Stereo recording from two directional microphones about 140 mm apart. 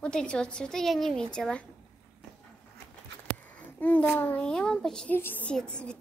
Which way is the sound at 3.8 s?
10° left (ahead or behind).